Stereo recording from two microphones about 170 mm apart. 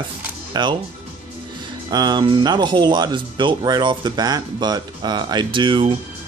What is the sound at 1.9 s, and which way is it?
Speech, 25° right (ahead or behind).